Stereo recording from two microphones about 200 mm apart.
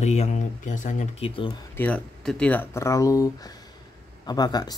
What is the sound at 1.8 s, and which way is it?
Speech, 5° left (ahead or behind).